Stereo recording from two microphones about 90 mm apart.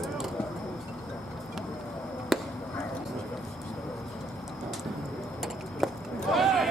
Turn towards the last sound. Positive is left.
turn(degrees=0)  # may be behind; listen again after turning